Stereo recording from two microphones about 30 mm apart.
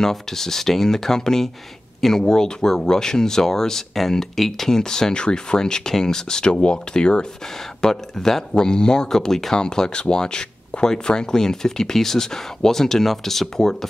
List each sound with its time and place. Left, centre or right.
0.0 s speech: centre; by 7.2 s left
7.9 s speech: centre
8.5 s speech: left
9.6 s speech: left
10.7 s speech: left
11.1 s speech: left